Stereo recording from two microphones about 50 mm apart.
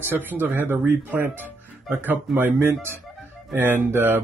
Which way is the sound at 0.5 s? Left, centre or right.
Right.